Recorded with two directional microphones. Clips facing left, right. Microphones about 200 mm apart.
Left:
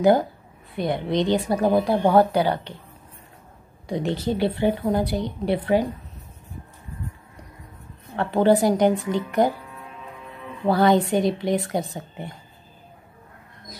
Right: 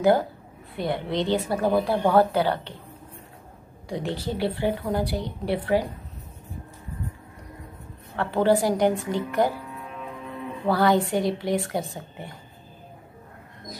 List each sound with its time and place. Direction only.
0.7 s speech: 15° left (ahead or behind)
3.9 s speech: 20° left (ahead or behind)
8.2 s speech: 20° left (ahead or behind)
10.7 s speech: 20° left (ahead or behind)